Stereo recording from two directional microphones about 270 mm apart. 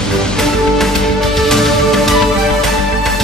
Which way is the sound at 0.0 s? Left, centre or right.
Centre.